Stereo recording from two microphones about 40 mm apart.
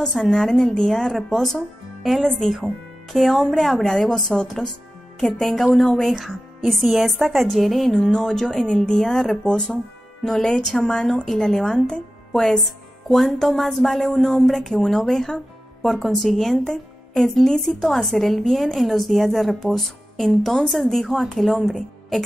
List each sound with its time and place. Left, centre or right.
0.0 s a woman's voice: centre
8.1 s a woman's voice: centre
20.4 s speech: centre
20.7 s a woman's voice: centre